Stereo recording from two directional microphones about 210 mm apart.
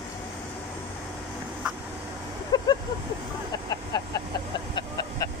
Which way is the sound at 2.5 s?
20° left (ahead or behind).